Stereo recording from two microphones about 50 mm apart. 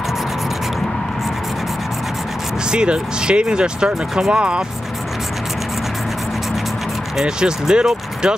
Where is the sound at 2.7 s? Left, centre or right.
Centre.